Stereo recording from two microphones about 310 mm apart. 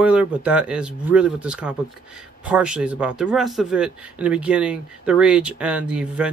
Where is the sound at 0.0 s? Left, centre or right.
Centre.